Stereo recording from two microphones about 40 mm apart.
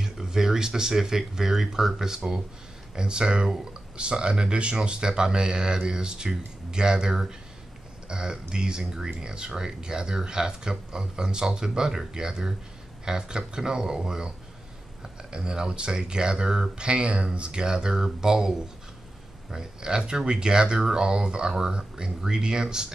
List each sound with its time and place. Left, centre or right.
0.0 s speech: centre
15.3 s speech: right